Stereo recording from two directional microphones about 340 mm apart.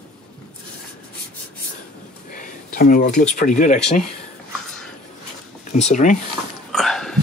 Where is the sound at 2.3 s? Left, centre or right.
Left.